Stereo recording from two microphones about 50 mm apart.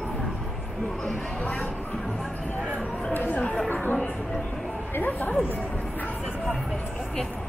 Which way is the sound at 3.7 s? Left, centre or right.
Left.